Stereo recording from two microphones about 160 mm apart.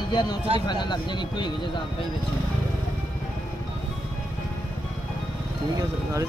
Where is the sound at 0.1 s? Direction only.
25° left (ahead or behind).